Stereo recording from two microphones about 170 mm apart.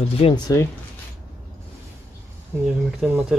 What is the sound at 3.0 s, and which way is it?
Speech, 5° right (ahead or behind).